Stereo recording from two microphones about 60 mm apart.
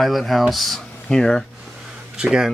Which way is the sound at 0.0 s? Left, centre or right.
Centre.